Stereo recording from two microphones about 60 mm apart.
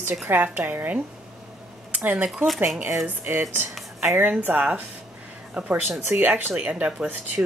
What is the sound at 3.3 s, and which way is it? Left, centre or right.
Speech, right.